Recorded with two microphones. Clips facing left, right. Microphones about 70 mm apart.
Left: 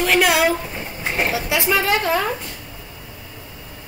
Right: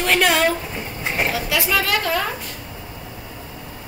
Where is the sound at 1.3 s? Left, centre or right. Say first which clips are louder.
Left 1 dB; left.